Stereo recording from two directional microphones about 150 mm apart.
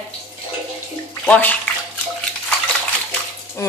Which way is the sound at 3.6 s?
20° left (ahead or behind).